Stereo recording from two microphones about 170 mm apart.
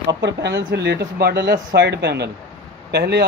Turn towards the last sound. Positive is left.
turn(degrees=-75)  # may be behind; listen again after turning